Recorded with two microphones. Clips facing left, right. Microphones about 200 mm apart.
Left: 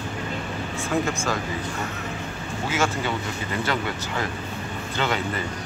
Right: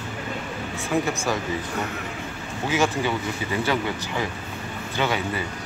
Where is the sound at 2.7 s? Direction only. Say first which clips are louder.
Right 3 dB; 15° right (ahead or behind).